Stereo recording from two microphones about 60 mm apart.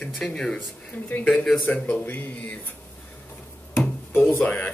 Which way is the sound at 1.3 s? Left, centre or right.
Centre.